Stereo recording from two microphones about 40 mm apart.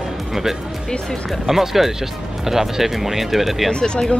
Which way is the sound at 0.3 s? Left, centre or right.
Centre.